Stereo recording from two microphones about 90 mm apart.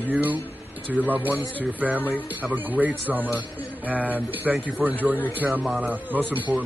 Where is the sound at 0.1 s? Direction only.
20° right (ahead or behind).